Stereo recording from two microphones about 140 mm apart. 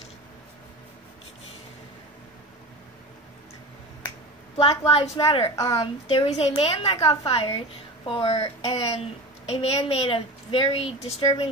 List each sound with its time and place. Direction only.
4.6 s a woman's voice: 45° left (ahead or behind)